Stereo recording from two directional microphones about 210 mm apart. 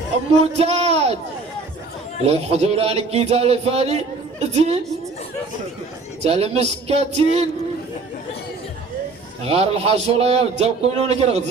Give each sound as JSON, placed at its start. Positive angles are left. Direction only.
{"t": 0.6, "sound": "a sound", "side_deg": -30}
{"t": 2.2, "sound": "speech", "side_deg": -30}
{"t": 6.2, "sound": "speech", "side_deg": -30}
{"t": 9.4, "sound": "speech", "side_deg": -30}